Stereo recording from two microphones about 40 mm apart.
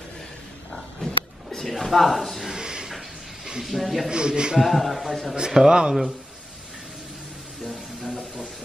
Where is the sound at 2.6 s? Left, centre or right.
Centre.